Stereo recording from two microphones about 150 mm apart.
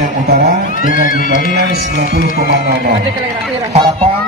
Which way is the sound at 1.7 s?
90° right.